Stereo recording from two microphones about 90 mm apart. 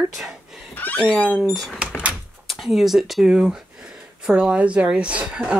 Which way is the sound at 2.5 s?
Centre (ahead or behind).